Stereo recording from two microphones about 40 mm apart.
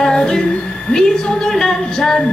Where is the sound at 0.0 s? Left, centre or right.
Centre.